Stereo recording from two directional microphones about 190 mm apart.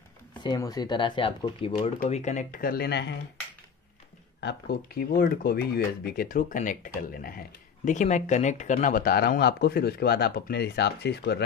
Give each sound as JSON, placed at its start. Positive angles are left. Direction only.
{"t": 0.4, "sound": "speech", "side_deg": 20}
{"t": 1.8, "sound": "speech", "side_deg": 35}
{"t": 4.4, "sound": "speech", "side_deg": 60}